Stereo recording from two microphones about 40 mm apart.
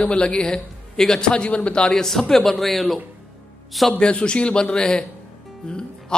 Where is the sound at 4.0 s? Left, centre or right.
Left.